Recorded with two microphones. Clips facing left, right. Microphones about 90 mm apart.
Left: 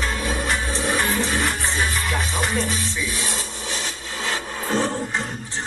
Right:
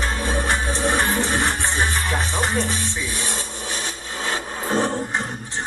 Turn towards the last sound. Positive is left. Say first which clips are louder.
# right 1 dB
turn(degrees=-25)  # may be behind; listen again after turning